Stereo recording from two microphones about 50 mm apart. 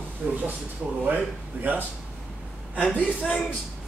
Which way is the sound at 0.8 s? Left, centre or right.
Centre.